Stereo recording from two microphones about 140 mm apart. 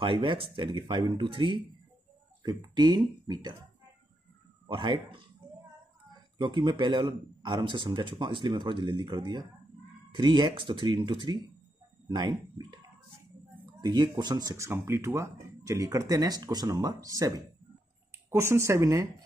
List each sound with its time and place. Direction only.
0.0 s a man's voice: 35° right (ahead or behind)
4.6 s a man's voice: 35° right (ahead or behind)
6.3 s a man's voice: 30° right (ahead or behind)